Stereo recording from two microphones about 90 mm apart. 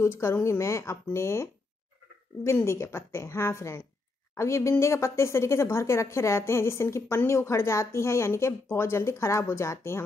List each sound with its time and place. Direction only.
0.0 s a woman's voice: 30° left (ahead or behind)